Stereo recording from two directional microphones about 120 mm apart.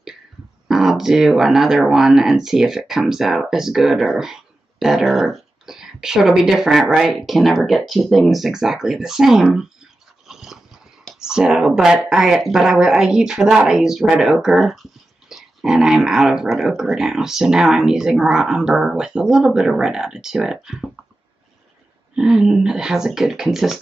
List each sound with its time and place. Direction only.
0.7 s speech: 5° right (ahead or behind)
10.2 s dog: 5° right (ahead or behind)
11.1 s speech: 5° right (ahead or behind)
22.1 s speech: 5° right (ahead or behind)